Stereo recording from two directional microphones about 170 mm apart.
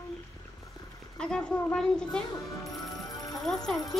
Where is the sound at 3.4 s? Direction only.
Centre (ahead or behind).